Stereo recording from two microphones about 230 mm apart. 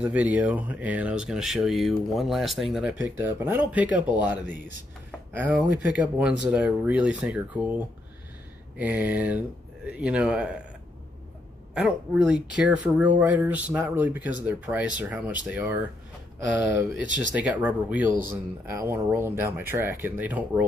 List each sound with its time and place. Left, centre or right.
0.0 s speech: centre
11.7 s speech: centre